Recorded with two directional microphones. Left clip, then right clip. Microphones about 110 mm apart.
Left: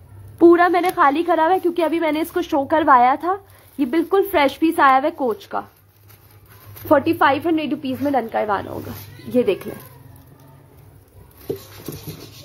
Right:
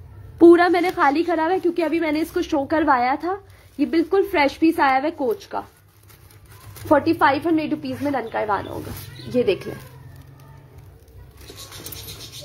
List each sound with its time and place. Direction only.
0.4 s a sound: 5° right (ahead or behind)
0.8 s a woman's voice: 10° left (ahead or behind)
1.1 s a woman's voice: 25° left (ahead or behind)
6.9 s a woman's voice: 50° left (ahead or behind)
9.3 s a woman's voice: 25° left (ahead or behind)